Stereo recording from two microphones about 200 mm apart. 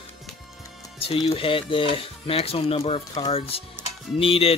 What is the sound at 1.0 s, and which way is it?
Speech, 30° left (ahead or behind).